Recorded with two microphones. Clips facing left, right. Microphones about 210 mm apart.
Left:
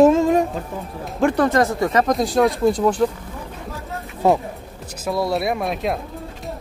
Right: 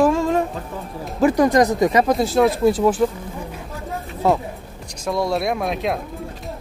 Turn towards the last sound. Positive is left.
turn(degrees=0)  # may be behind; listen again after turning